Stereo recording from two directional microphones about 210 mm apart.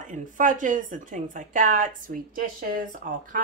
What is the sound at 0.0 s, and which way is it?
Speech, 35° right (ahead or behind).